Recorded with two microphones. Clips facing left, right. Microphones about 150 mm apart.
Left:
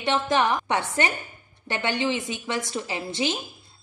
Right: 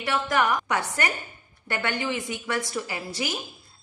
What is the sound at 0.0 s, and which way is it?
A woman's voice, 25° left (ahead or behind).